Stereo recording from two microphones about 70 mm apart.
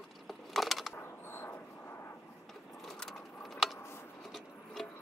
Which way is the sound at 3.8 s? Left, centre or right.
Left.